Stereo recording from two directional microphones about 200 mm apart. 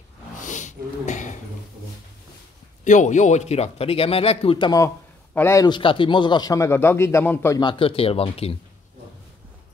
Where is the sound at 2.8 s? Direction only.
40° left (ahead or behind).